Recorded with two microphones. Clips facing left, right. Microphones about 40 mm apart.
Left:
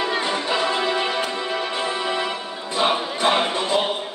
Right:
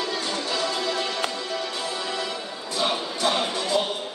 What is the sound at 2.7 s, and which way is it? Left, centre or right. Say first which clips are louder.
Music: left 5 dB; left.